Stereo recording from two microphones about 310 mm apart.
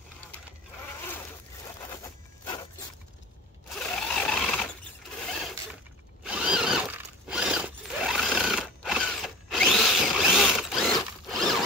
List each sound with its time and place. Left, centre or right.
3.7 s sewing machine: centre
6.2 s zipper: centre